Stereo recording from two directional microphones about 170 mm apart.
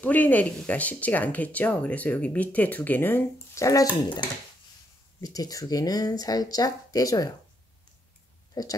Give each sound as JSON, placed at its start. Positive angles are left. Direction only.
{"t": 0.0, "sound": "speech", "side_deg": 10}
{"t": 8.6, "sound": "speech", "side_deg": 20}